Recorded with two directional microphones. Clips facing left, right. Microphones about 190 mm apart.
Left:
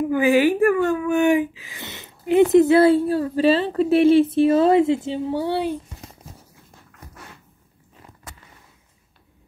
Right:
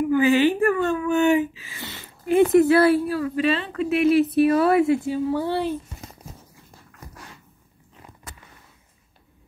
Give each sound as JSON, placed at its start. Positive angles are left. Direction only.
{"t": 0.1, "sound": "speech", "side_deg": 10}